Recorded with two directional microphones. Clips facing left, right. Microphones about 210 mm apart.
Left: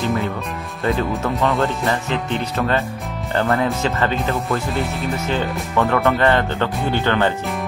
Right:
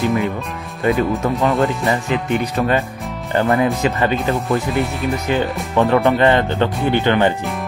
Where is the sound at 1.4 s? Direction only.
Centre (ahead or behind).